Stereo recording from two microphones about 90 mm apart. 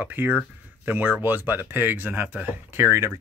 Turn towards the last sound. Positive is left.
turn(degrees=-30)  # may be behind; listen again after turning